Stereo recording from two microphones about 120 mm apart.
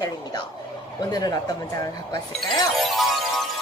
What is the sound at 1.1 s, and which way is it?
A woman's voice, 35° left (ahead or behind).